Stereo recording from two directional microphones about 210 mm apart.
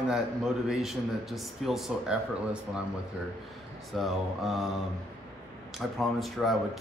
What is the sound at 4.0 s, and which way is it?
Speech, centre (ahead or behind).